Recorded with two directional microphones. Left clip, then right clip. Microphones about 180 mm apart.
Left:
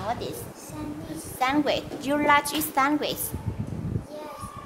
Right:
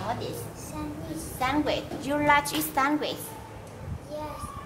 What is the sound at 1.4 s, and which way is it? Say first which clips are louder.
Speech: left 3 dB; 55° left (ahead or behind).